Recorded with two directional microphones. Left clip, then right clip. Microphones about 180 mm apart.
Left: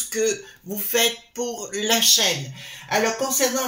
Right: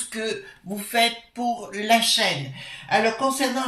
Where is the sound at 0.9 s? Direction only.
50° left (ahead or behind).